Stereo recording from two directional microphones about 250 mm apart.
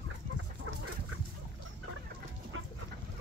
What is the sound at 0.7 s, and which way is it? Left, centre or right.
Chicken, right.